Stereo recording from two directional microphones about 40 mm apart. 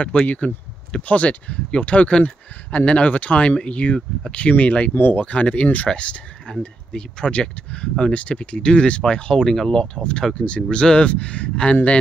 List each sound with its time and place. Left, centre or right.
0.1 s speech: left
4.9 s speech: left
5.2 s speech: left; by 9.7 s centre
9.7 s speech: left